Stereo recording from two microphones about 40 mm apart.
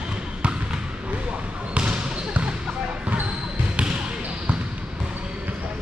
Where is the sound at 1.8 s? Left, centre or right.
Right.